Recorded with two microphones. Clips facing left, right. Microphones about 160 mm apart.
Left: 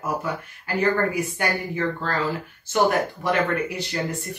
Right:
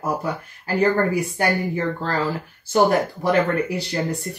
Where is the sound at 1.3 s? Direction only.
35° right (ahead or behind).